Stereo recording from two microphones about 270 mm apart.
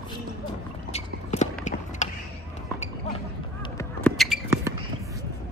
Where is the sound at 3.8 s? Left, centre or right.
Centre.